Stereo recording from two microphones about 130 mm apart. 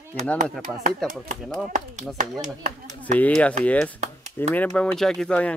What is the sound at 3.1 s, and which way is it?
Speech, 10° left (ahead or behind).